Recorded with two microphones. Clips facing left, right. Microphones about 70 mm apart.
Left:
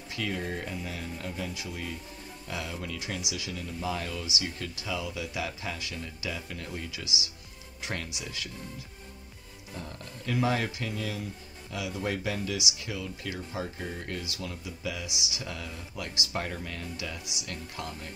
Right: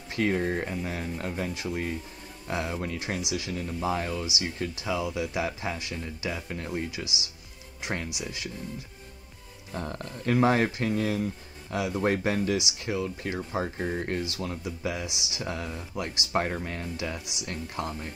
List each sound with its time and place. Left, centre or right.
0.1 s speech: right
9.8 s speech: right